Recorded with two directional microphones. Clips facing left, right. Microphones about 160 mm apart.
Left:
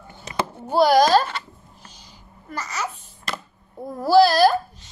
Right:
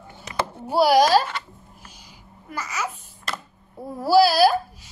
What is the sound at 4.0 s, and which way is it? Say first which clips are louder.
Speech: left 1 dB; 10° right (ahead or behind).